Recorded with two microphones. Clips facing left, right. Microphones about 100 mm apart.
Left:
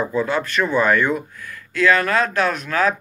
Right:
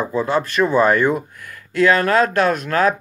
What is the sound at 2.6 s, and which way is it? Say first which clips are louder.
Speech: right 3 dB; 40° right (ahead or behind).